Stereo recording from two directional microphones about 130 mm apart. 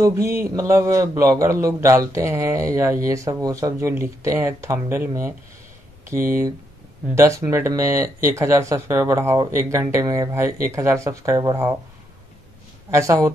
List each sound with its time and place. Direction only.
0.0 s a man's voice: 20° right (ahead or behind)
12.9 s a man's voice: 25° right (ahead or behind)